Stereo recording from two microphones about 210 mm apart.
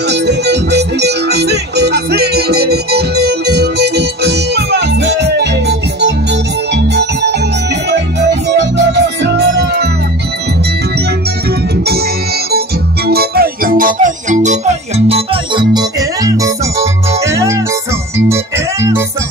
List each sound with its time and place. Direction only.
0.1 s music: 55° right (ahead or behind)
6.7 s keyboard: 55° right (ahead or behind)
8.5 s music: 55° right (ahead or behind)
12.5 s music: 50° right (ahead or behind); by 15.8 s 25° right (ahead or behind)
16.3 s music: 15° right (ahead or behind)